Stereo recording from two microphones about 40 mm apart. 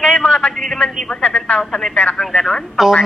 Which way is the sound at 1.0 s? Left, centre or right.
Left.